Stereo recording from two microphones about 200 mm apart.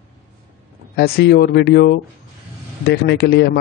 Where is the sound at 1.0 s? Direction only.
50° left (ahead or behind).